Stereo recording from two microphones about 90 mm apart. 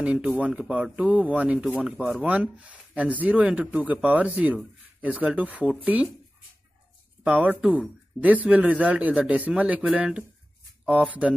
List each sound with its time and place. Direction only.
0.0 s speech: 10° right (ahead or behind)
2.2 s speech: 15° right (ahead or behind)
7.2 s speech: 15° right (ahead or behind)